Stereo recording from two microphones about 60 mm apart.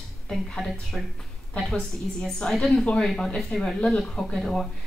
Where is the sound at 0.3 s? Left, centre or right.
Centre.